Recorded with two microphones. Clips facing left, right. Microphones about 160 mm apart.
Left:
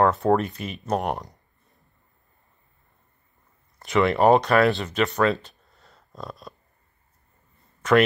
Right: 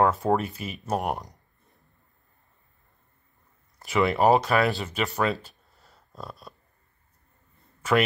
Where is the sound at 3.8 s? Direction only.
5° right (ahead or behind).